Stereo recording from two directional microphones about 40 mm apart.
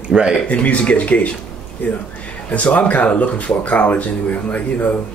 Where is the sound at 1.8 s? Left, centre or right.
Left.